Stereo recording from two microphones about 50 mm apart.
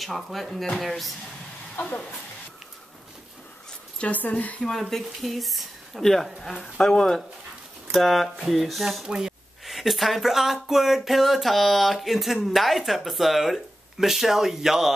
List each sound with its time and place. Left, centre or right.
0.0 s speech: centre
4.0 s a woman's voice: left
4.6 s speech: centre
6.5 s speech: centre
9.0 s speech: centre
9.7 s speech: centre